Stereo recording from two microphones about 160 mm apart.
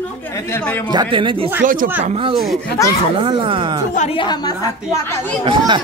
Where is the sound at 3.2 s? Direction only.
35° right (ahead or behind).